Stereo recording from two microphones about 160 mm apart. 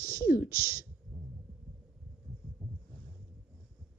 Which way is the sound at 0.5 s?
65° left (ahead or behind).